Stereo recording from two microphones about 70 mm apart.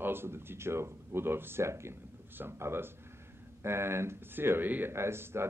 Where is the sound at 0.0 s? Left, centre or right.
Right.